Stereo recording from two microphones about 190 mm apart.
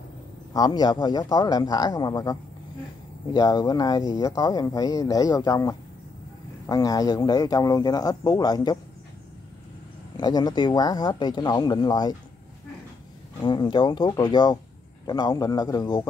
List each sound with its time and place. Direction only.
0.5 s speech: 20° left (ahead or behind)
3.3 s speech: 20° left (ahead or behind)
10.1 s speech: 20° left (ahead or behind)
13.4 s speech: 25° left (ahead or behind)